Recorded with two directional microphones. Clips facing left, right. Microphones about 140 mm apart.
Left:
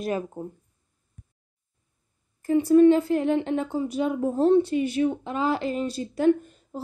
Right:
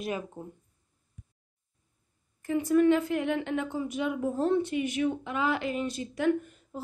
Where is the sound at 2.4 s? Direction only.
30° left (ahead or behind).